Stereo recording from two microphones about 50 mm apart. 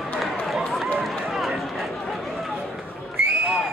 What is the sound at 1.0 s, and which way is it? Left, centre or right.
Run, centre.